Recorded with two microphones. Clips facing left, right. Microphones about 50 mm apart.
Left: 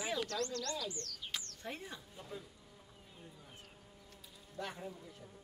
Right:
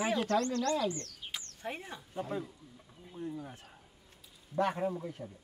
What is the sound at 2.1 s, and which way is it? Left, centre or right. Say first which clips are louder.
Speech: right 15 dB; right.